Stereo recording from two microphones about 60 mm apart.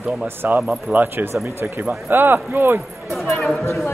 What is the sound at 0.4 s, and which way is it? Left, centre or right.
Speech, right.